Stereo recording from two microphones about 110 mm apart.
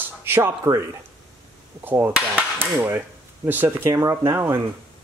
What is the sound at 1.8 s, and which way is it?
Speech, 20° right (ahead or behind).